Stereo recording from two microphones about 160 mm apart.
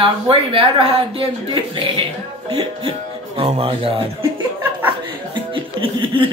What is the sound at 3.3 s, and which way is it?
Speech, 35° right (ahead or behind).